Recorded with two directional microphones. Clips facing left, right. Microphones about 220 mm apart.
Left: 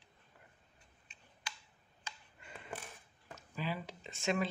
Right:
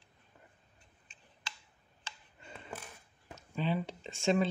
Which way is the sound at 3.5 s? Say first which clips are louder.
Right 6 dB; 25° right (ahead or behind).